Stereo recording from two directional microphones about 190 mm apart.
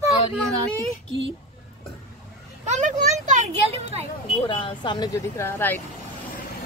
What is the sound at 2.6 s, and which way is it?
Speech, 40° right (ahead or behind).